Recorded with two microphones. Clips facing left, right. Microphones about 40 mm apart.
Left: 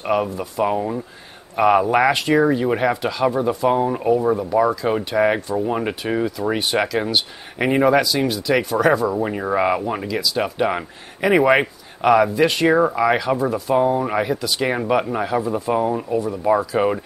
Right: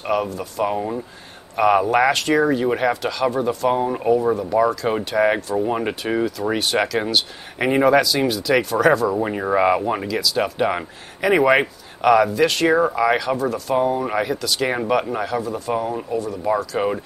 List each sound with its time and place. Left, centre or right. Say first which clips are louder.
0.0 s speech: left 1 dB; centre
9.2 s speech: right 1 dB; centre
13.7 s speech: left 2 dB; centre
15.7 s speech: left 3 dB; centre